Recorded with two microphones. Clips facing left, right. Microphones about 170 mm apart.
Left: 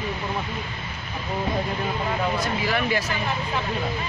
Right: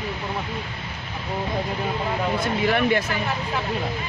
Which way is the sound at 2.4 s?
55° right (ahead or behind).